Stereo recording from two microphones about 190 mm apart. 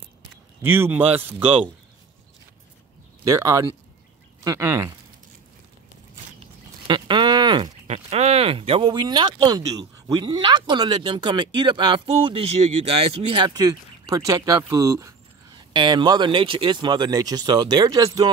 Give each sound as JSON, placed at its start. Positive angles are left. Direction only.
{"t": 0.6, "sound": "speech", "side_deg": -10}
{"t": 3.3, "sound": "speech", "side_deg": -15}
{"t": 6.9, "sound": "a sound", "side_deg": -25}
{"t": 7.8, "sound": "speech", "side_deg": -35}